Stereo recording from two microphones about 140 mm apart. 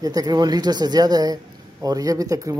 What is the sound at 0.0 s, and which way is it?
A woman's voice, 25° right (ahead or behind).